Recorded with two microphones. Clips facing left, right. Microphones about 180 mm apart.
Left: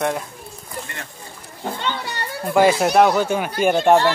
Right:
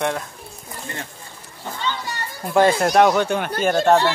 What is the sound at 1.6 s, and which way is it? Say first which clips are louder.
Speech: left 2 dB; 60° left (ahead or behind).